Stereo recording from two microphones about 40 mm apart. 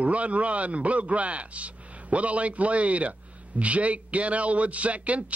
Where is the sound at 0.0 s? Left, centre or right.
Right.